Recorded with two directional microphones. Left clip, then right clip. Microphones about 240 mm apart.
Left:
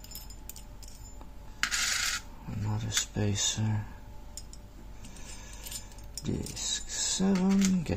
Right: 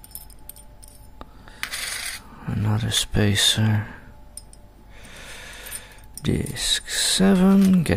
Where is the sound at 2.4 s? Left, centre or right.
Right.